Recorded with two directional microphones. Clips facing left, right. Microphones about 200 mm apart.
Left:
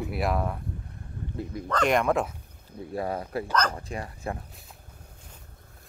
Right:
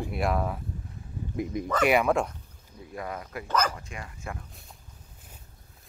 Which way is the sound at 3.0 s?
30° left (ahead or behind).